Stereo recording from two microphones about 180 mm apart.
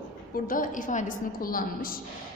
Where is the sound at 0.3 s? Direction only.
50° left (ahead or behind).